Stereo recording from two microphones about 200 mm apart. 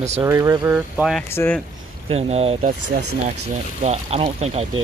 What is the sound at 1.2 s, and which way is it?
Speech, 10° left (ahead or behind).